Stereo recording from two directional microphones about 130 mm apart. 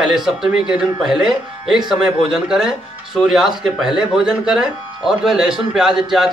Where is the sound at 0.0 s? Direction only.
5° right (ahead or behind).